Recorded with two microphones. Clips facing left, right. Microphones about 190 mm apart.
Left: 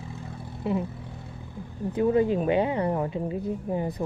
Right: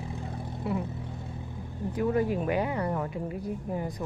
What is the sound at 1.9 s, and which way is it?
A woman's voice, 25° left (ahead or behind).